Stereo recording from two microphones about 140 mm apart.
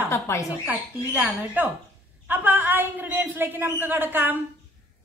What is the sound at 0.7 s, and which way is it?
A man's voice, 10° right (ahead or behind).